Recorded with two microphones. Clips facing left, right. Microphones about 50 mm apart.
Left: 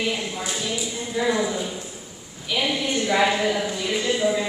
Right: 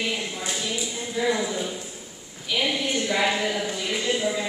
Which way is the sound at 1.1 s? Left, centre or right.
Centre.